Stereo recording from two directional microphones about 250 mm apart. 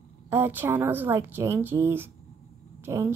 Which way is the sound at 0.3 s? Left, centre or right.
Centre.